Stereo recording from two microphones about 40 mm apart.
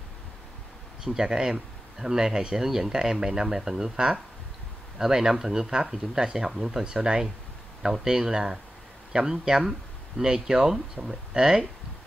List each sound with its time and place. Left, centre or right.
1.0 s speech: centre